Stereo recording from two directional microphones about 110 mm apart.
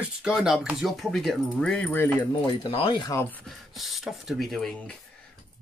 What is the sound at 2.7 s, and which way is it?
Speech, 60° left (ahead or behind).